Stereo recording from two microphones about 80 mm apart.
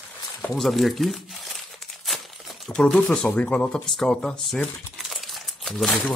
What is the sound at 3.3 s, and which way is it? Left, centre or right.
Speech, centre.